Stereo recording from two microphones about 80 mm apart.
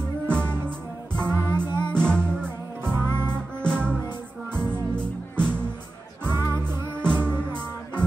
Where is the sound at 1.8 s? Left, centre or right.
Centre.